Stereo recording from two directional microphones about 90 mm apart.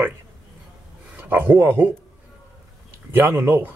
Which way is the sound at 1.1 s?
20° right (ahead or behind).